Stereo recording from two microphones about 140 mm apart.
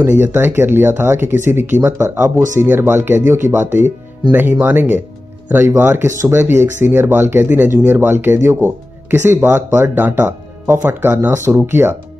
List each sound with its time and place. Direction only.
0.2 s speech: 15° right (ahead or behind)